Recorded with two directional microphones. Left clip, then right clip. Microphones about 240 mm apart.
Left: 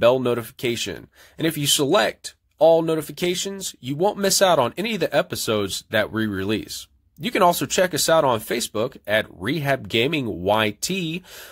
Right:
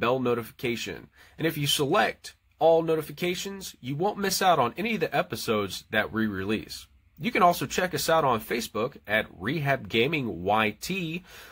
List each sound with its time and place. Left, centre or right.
0.0 s speech: left